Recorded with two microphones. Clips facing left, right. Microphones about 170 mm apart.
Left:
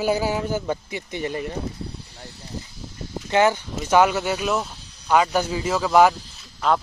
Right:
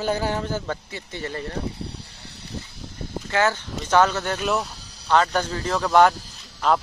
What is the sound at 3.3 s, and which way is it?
Speech, 15° left (ahead or behind).